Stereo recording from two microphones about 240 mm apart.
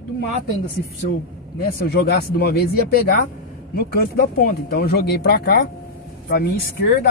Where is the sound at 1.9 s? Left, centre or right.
Left.